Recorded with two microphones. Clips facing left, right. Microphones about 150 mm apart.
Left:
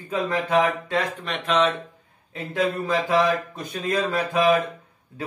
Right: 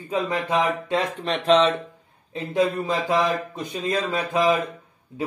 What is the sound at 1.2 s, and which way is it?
Speech, 30° right (ahead or behind).